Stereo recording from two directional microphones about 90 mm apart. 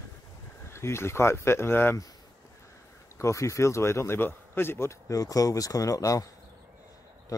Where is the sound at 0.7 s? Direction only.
30° left (ahead or behind).